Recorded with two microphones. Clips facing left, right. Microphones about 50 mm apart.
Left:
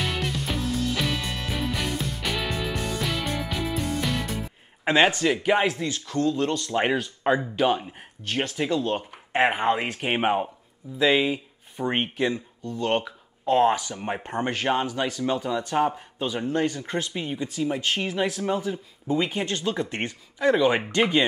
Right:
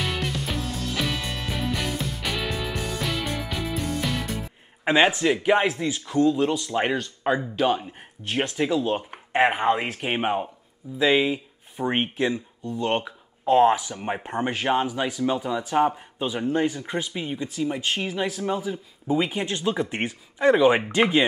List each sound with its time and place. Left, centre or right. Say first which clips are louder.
0.0 s music: even; centre
6.7 s speech: left 1 dB; centre
8.2 s speech: right 2 dB; centre
11.0 s speech: right 1 dB; centre